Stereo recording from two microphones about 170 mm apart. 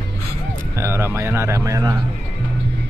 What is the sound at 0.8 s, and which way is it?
Speech, 15° right (ahead or behind).